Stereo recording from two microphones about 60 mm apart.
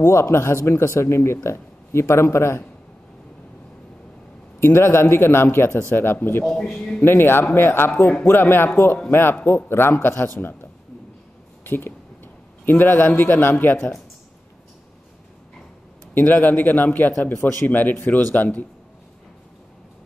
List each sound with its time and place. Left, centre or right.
0.0 s speech: left
4.6 s a man's voice: left
6.5 s a man's voice: centre
7.0 s a man's voice: left
11.6 s a sound: left
12.6 s a man's voice: left
16.2 s a man's voice: left